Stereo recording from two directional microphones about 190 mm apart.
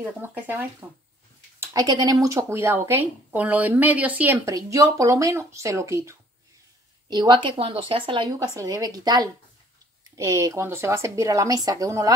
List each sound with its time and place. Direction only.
0.0 s a woman's voice: 10° right (ahead or behind)